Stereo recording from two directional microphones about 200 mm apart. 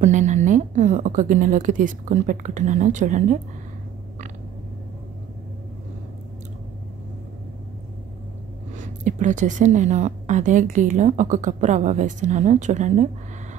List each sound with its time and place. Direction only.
0.0 s a woman's voice: 35° right (ahead or behind)
8.7 s a woman's voice: 40° right (ahead or behind)